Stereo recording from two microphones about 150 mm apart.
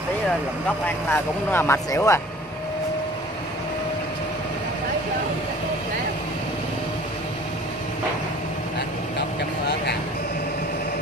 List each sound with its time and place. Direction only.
1.1 s speech: 15° left (ahead or behind)